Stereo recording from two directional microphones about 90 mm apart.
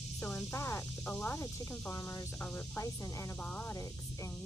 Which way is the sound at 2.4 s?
20° left (ahead or behind).